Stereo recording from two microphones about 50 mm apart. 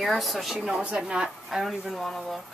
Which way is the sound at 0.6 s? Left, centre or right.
Centre.